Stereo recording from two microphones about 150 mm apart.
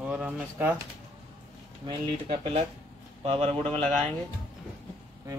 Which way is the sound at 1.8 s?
35° right (ahead or behind).